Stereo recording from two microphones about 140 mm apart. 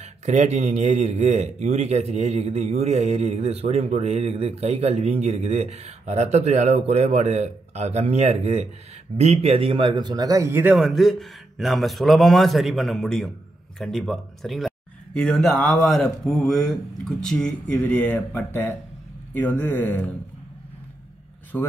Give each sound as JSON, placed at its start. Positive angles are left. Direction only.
{"t": 0.0, "sound": "a man's voice", "side_deg": -55}
{"t": 10.8, "sound": "a man's voice", "side_deg": 0}
{"t": 21.5, "sound": "speech", "side_deg": 10}